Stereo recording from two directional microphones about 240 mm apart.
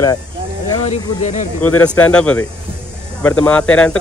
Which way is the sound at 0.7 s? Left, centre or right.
Left.